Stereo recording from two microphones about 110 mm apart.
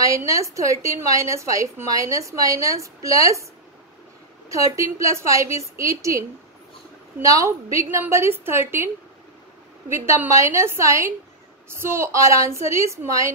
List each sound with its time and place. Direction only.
0.0 s a woman's voice: 30° right (ahead or behind)
4.5 s a woman's voice: 30° right (ahead or behind)